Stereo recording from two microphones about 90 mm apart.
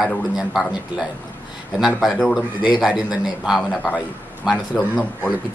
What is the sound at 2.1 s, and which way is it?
A man's voice, centre (ahead or behind).